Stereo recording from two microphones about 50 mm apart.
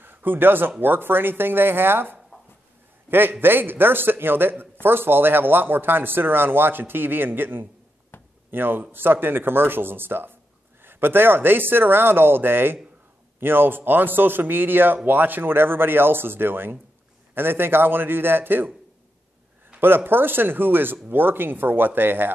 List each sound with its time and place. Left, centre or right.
0.0 s a man's voice: right
8.1 s a sound: left
8.5 s a man's voice: right
19.8 s a man's voice: right